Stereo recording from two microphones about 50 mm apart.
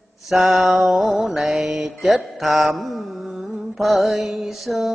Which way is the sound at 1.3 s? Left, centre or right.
Centre.